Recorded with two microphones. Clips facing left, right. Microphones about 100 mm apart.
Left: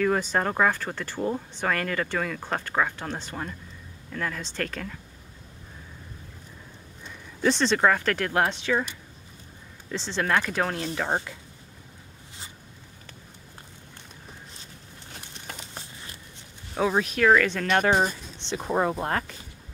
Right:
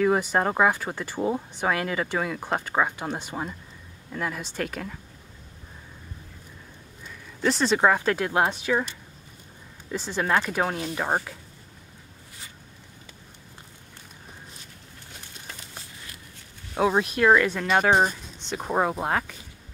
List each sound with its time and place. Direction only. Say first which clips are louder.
0.0 s speech: right 2 dB; 15° right (ahead or behind)
7.4 s speech: right 1 dB; 10° right (ahead or behind)
9.8 s speech: right 1 dB; 10° right (ahead or behind)
15.4 s a sound: left 3 dB; 20° left (ahead or behind)
16.7 s speech: right 2 dB; 5° right (ahead or behind)